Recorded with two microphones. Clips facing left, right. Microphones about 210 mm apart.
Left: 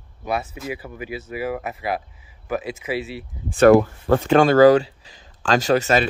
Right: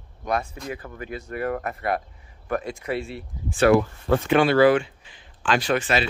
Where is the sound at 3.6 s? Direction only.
45° left (ahead or behind).